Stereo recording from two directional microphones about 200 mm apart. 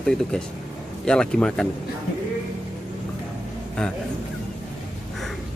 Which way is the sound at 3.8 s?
5° left (ahead or behind).